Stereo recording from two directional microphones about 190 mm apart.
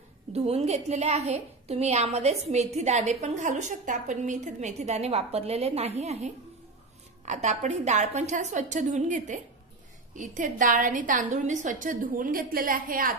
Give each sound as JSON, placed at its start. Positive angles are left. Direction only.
{"t": 0.3, "sound": "a woman's voice", "side_deg": -35}